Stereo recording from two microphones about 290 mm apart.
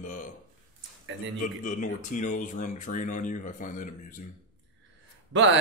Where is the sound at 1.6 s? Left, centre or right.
Left.